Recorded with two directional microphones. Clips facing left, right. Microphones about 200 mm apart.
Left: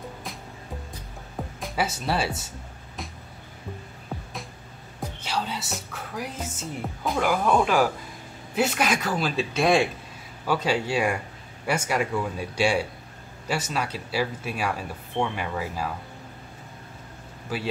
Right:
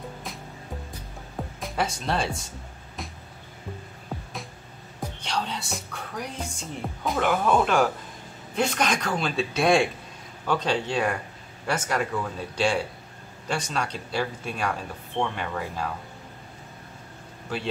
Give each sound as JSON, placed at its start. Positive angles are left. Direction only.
{"t": 1.6, "sound": "speech", "side_deg": 5}
{"t": 5.2, "sound": "speech", "side_deg": 5}
{"t": 17.5, "sound": "speech", "side_deg": 5}